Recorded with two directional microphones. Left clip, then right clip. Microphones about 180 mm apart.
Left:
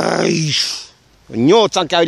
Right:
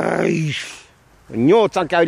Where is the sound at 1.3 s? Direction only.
20° left (ahead or behind).